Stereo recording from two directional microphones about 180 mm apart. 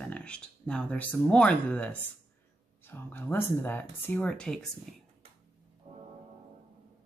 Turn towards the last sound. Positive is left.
turn(degrees=-35)  # may be behind; listen again after turning